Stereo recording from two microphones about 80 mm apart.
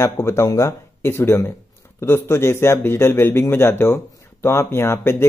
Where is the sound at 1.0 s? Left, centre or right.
Left.